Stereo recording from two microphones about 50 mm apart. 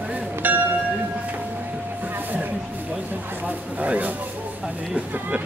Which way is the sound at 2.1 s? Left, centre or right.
Right.